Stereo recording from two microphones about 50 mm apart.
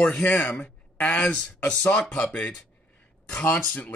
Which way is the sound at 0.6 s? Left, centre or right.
Left.